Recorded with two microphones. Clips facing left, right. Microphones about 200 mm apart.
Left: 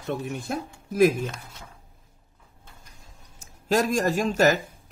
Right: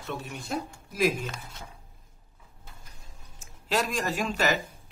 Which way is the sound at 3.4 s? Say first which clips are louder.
Left 6 dB; 45° left (ahead or behind).